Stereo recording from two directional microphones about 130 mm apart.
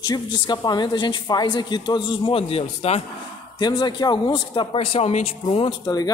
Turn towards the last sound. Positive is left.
turn(degrees=30)  # may be behind; listen again after turning